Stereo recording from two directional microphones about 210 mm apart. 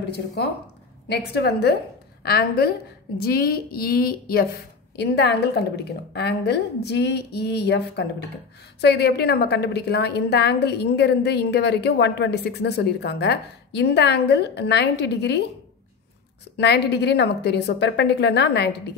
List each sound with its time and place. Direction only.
1.0 s a woman's voice: 50° left (ahead or behind)
16.5 s a woman's voice: 50° left (ahead or behind)